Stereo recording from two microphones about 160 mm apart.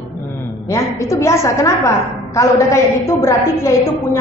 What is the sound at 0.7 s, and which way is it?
A woman's voice, 20° left (ahead or behind).